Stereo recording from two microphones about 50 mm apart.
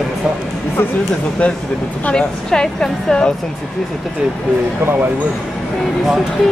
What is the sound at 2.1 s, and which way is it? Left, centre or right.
A woman's voice, centre.